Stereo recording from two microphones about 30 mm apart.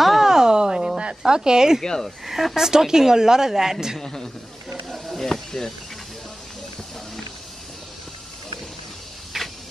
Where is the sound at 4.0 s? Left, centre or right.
Centre.